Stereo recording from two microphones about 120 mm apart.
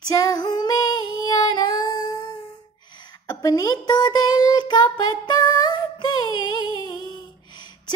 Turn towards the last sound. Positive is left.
turn(degrees=40)  # may be behind; listen again after turning